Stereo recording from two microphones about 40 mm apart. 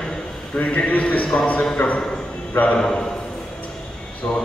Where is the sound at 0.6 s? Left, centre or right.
Left.